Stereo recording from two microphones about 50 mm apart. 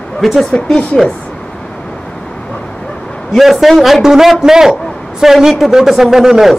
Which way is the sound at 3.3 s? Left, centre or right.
Centre.